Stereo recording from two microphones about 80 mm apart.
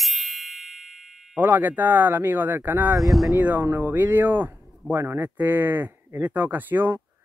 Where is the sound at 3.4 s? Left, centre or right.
Right.